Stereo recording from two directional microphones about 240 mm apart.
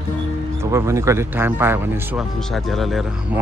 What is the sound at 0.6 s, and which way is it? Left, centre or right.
Speech, centre.